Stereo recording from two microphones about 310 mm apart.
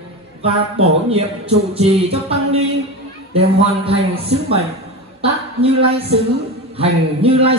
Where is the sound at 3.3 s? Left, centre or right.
Centre.